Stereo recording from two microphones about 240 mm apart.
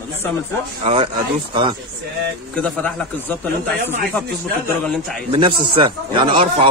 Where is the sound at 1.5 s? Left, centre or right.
Right.